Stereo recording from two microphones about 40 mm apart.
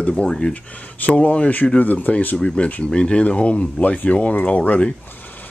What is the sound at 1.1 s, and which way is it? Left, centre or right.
Speech, left.